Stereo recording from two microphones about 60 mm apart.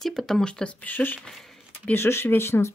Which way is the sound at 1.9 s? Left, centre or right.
Left.